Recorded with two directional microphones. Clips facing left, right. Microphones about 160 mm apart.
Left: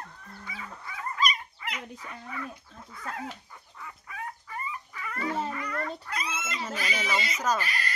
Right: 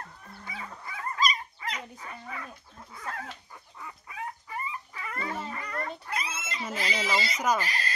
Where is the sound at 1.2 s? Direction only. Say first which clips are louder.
Even; 35° right (ahead or behind).